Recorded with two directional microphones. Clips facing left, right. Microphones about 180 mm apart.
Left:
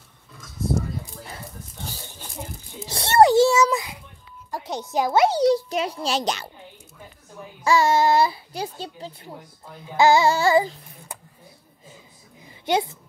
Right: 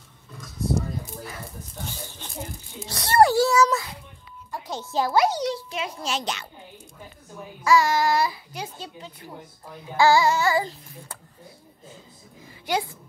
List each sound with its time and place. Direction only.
2.9 s a child's voice: 25° left (ahead or behind)
7.6 s a child's voice: 25° left (ahead or behind)
9.9 s a child's voice: 20° left (ahead or behind)
12.6 s speech: 25° left (ahead or behind)